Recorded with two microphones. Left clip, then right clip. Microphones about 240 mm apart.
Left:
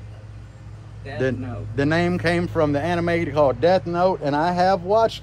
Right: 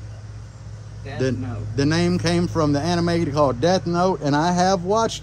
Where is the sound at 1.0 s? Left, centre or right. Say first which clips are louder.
Left 1 dB; centre.